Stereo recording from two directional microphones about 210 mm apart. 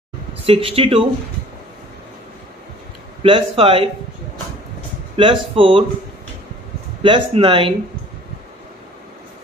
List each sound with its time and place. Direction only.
0.5 s a man's voice: 25° right (ahead or behind)
3.2 s a man's voice: 25° right (ahead or behind)
5.1 s a man's voice: 25° right (ahead or behind)
7.0 s a man's voice: 25° right (ahead or behind)